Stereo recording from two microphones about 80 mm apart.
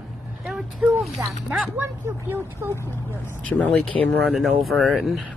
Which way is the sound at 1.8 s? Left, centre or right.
Right.